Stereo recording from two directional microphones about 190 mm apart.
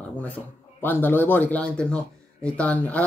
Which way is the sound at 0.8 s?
10° left (ahead or behind).